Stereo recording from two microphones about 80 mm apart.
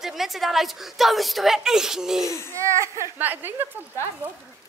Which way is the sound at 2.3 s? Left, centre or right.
Left.